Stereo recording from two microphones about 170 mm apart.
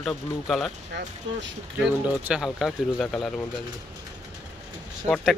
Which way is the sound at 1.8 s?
5° right (ahead or behind).